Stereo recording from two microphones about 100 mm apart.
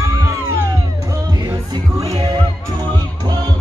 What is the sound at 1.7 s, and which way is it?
Music, 35° right (ahead or behind).